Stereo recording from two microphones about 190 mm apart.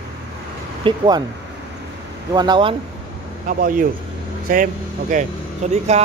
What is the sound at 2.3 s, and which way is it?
Speech, 25° right (ahead or behind).